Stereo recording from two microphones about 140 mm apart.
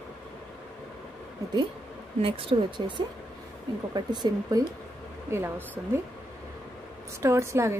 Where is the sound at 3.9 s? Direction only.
30° right (ahead or behind).